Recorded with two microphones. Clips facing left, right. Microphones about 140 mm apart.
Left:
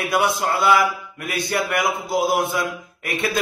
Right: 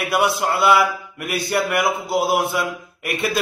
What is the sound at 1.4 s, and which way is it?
A man's voice, centre (ahead or behind).